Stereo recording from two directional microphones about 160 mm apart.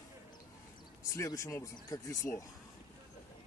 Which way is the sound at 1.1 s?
20° left (ahead or behind).